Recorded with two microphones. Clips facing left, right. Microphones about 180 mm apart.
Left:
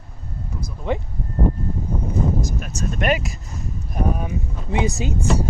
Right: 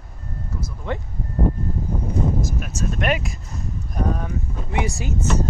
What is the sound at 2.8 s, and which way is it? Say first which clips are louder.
Speech: left 2 dB; centre (ahead or behind).